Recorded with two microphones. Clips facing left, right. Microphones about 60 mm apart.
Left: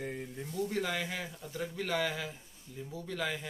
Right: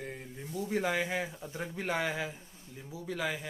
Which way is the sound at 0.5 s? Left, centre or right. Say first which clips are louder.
Right 3 dB; centre.